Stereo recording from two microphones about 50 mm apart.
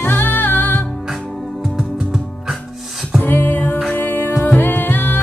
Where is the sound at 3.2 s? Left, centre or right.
Left.